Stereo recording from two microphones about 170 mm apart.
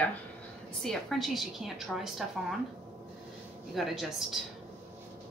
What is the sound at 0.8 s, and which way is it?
A woman's voice, centre (ahead or behind).